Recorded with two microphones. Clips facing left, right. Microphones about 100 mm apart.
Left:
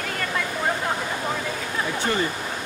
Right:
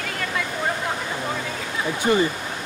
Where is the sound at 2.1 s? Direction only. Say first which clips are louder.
Right 7 dB; 15° right (ahead or behind).